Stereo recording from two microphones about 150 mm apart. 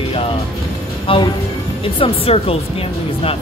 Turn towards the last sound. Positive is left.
turn(degrees=40)  # may be behind; listen again after turning